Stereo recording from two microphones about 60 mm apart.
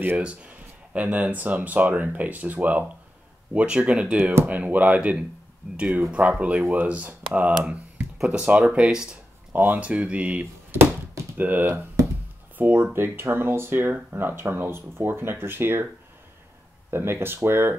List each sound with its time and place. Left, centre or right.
0.2 s speech: centre
4.2 s speech: right
4.5 s speech: right
8.8 s speech: centre
9.1 s speech: right
10.4 s a sound: right
11.3 s speech: right
16.9 s speech: right